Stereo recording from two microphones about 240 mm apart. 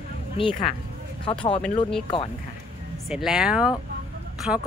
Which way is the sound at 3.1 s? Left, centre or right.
Centre.